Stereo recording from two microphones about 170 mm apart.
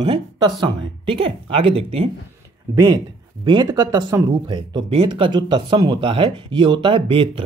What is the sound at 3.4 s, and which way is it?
Speech, 25° right (ahead or behind).